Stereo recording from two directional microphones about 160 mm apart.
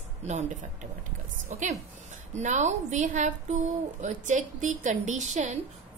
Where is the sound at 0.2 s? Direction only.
45° right (ahead or behind).